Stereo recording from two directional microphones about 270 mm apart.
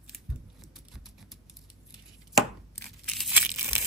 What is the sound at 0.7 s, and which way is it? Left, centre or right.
Typing, centre.